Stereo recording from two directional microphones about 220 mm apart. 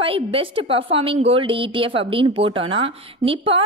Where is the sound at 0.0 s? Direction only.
25° right (ahead or behind).